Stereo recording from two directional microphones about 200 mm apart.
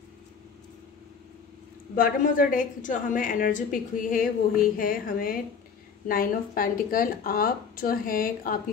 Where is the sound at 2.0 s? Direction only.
45° left (ahead or behind).